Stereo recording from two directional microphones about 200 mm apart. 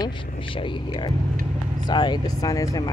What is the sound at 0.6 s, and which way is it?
Speech, 25° left (ahead or behind).